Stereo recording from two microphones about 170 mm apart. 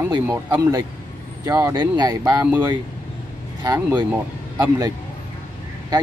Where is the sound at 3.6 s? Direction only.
25° right (ahead or behind).